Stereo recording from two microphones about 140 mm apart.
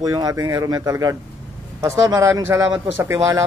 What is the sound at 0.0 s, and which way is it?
Mantra, 25° right (ahead or behind).